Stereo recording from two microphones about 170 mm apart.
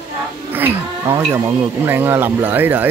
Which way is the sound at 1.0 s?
20° right (ahead or behind).